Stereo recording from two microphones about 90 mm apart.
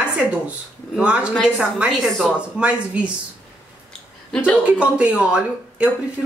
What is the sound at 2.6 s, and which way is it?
Speech, 15° right (ahead or behind).